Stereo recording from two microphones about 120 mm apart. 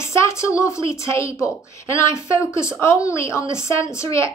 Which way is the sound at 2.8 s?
25° left (ahead or behind).